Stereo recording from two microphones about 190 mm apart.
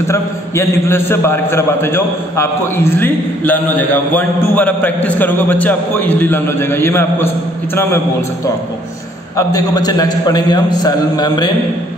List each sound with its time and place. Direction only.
0.1 s a man's voice: 15° left (ahead or behind)
9.4 s a man's voice: 20° left (ahead or behind)